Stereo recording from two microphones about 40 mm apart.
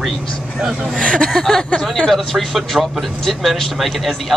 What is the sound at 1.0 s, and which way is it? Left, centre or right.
Speech, left.